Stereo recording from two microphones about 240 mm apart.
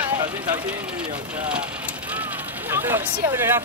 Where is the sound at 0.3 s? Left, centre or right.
Centre.